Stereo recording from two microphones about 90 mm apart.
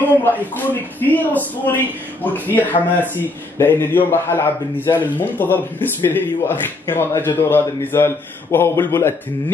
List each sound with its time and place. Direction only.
0.2 s a man's voice: 20° left (ahead or behind)